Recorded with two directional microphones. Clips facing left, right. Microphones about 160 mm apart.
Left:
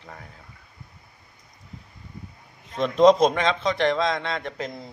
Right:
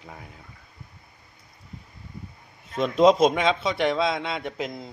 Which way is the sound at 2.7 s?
5° right (ahead or behind).